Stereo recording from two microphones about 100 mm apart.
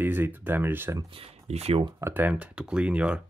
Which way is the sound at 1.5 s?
90° right.